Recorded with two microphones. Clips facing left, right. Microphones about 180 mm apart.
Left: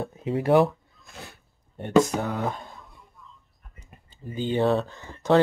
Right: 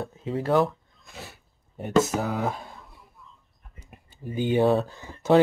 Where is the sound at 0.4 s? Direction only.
15° left (ahead or behind).